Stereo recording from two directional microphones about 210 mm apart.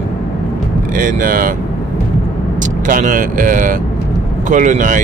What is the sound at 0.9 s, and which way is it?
Speech, 40° right (ahead or behind).